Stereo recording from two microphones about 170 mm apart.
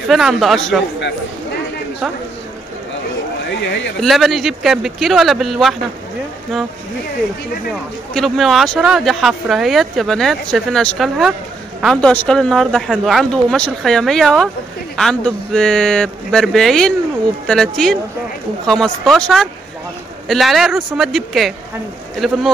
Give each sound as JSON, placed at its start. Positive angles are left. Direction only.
{"t": 0.1, "sound": "speech", "side_deg": 0}
{"t": 3.4, "sound": "speech", "side_deg": 90}
{"t": 4.0, "sound": "speech", "side_deg": 0}
{"t": 8.1, "sound": "speech", "side_deg": 0}